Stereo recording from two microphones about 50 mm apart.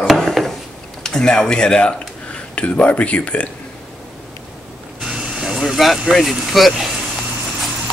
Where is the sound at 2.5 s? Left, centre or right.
Left.